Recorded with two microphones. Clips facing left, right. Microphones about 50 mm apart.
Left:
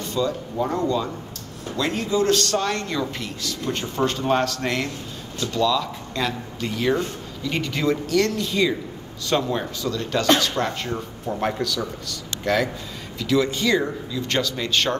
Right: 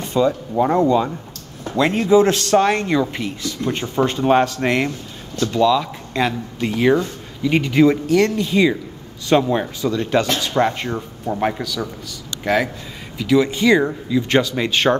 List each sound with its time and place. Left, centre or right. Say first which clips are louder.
0.0 s speech: right 6 dB; right
1.8 s a man's voice: right 7 dB; right
2.0 s speech: right 6 dB; right